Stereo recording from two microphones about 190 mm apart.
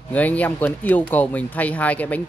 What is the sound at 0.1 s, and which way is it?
Speech, 10° left (ahead or behind).